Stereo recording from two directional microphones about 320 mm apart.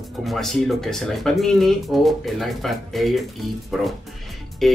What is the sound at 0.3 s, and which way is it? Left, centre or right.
Speech, centre.